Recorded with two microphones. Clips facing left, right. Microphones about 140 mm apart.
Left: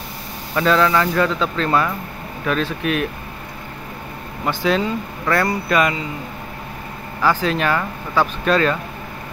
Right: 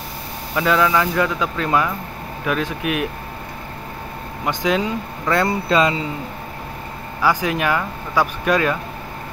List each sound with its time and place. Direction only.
0.6 s speech: 10° right (ahead or behind)
4.5 s speech: 15° right (ahead or behind)
7.2 s speech: 15° right (ahead or behind)